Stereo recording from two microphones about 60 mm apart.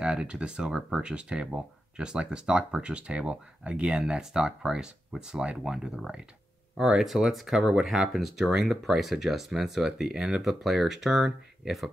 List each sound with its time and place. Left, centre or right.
0.0 s speech: centre